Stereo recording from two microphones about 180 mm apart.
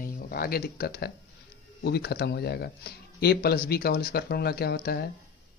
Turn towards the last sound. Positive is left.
turn(degrees=60)  # may be behind; listen again after turning